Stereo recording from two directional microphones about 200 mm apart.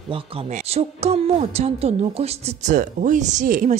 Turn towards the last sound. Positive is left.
turn(degrees=-40)  # may be behind; listen again after turning